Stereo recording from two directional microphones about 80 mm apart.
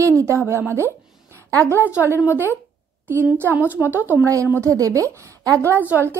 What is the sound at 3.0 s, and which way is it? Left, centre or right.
Speech, right.